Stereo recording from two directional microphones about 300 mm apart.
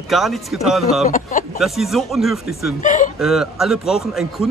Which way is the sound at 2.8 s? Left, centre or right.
Left.